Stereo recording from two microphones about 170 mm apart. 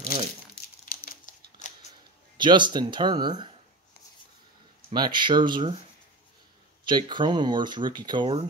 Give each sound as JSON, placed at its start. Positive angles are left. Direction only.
{"t": 0.8, "sound": "a sound", "side_deg": 55}
{"t": 2.3, "sound": "speech", "side_deg": -25}
{"t": 4.9, "sound": "speech", "side_deg": -25}
{"t": 6.9, "sound": "speech", "side_deg": -25}